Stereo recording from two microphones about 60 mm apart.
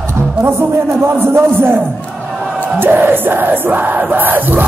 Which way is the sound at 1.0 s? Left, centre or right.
Right.